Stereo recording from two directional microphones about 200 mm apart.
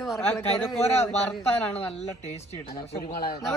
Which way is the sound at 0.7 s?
30° left (ahead or behind).